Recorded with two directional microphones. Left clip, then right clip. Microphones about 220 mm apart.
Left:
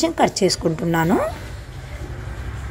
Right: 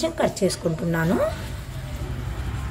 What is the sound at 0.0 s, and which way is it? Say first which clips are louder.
A woman's voice: left 5 dB; 35° left (ahead or behind).